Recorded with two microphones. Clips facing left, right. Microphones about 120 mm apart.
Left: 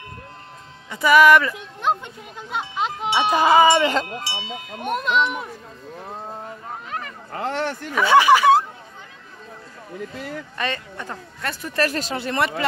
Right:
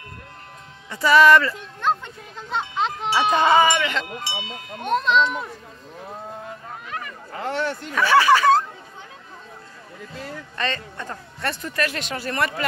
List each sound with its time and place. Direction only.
0.8 s a sound: 15° left (ahead or behind)
3.1 s speech: 10° left (ahead or behind)
3.6 s a sound: 35° left (ahead or behind)
4.8 s speech: 10° left (ahead or behind)
7.3 s speech: 40° left (ahead or behind)
7.9 s speech: 15° left (ahead or behind)
10.6 s speech: 15° left (ahead or behind)
11.7 s speech: 35° left (ahead or behind)
12.2 s a sound: 20° left (ahead or behind)